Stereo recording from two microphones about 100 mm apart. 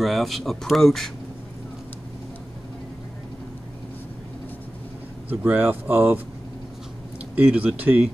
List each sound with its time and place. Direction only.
0.0 s speech: centre (ahead or behind)
5.3 s speech: 20° right (ahead or behind)
7.3 s speech: 15° right (ahead or behind)